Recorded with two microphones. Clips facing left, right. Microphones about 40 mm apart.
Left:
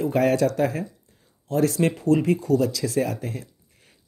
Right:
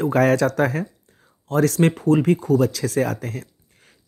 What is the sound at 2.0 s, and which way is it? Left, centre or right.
Speech, right.